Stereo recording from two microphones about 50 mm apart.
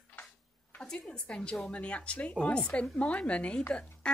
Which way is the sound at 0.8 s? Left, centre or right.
Centre.